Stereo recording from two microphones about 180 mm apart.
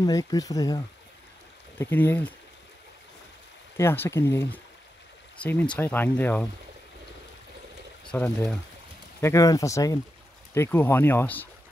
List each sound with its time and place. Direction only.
0.0 s speech: 20° left (ahead or behind)
3.7 s speech: 15° left (ahead or behind)
8.1 s speech: 15° left (ahead or behind)